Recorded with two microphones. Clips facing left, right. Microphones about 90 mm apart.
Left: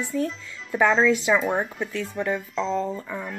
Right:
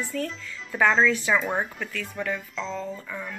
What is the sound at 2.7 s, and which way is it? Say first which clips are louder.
Speech: left 7 dB; 35° left (ahead or behind).